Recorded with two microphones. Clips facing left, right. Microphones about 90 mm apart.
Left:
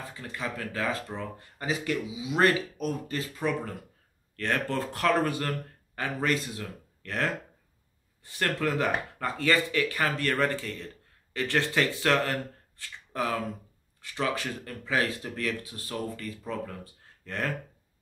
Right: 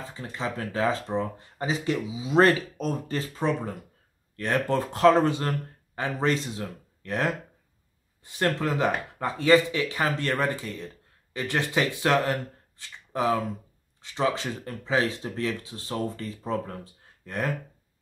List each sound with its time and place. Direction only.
0.1 s speech: 25° right (ahead or behind)
4.4 s speech: 20° right (ahead or behind)
16.8 s a sound: 15° right (ahead or behind)